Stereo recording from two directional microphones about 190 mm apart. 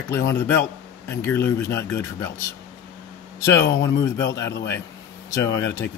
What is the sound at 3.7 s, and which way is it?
Speech, 70° left (ahead or behind).